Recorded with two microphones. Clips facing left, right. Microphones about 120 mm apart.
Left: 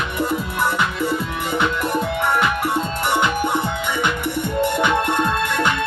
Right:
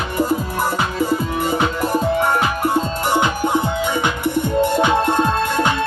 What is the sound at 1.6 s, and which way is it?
Music, 35° right (ahead or behind).